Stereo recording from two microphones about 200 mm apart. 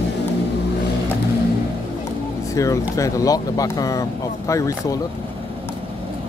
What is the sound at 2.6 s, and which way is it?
Speech, 15° left (ahead or behind).